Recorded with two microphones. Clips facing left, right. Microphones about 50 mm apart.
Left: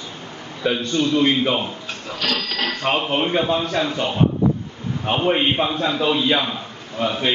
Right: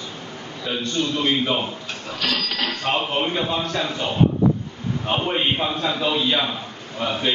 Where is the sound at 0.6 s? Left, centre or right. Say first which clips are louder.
Left 6 dB; left.